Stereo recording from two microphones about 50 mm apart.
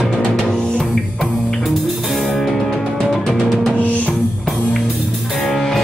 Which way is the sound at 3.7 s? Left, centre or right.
Left.